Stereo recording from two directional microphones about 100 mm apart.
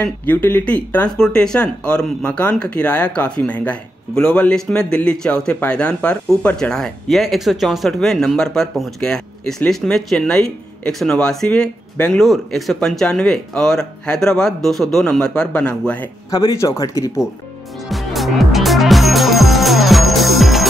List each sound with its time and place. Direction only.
0.0 s speech: 20° left (ahead or behind)
16.3 s speech: 35° left (ahead or behind)
17.8 s music: centre (ahead or behind)